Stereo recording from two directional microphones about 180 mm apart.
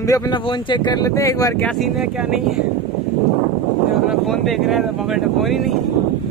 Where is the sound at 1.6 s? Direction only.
Centre (ahead or behind).